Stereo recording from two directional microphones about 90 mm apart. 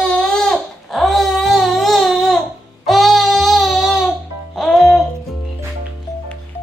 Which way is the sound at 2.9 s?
Centre (ahead or behind).